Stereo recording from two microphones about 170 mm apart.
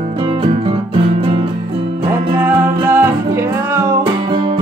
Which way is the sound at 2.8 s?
15° right (ahead or behind).